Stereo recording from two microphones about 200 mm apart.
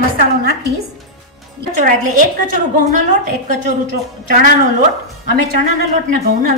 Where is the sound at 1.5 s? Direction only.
45° right (ahead or behind).